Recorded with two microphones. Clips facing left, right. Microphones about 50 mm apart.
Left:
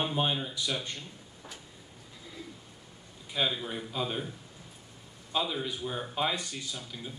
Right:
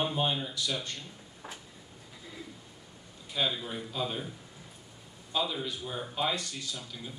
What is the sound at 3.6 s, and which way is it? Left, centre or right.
Speech, centre.